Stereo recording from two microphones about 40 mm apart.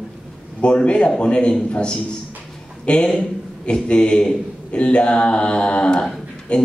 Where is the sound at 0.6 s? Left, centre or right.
Left.